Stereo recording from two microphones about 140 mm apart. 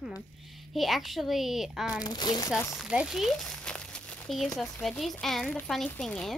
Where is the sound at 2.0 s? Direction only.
30° left (ahead or behind).